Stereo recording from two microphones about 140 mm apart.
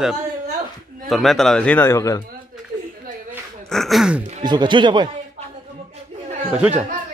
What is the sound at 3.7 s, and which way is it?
Speech, centre (ahead or behind).